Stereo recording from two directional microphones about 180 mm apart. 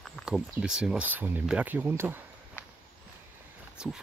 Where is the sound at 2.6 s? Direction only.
15° left (ahead or behind).